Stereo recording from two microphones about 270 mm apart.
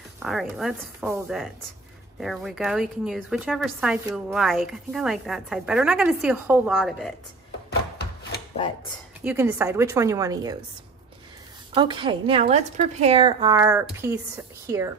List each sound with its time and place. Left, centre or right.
0.2 s a woman's voice: centre
9.2 s a woman's voice: centre
11.7 s a woman's voice: centre